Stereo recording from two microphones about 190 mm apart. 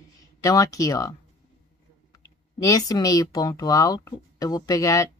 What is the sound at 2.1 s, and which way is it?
Speech, 20° left (ahead or behind).